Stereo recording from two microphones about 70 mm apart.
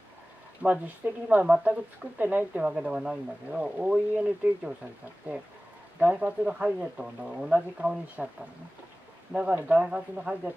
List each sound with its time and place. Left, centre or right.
0.6 s speech: right
9.3 s speech: centre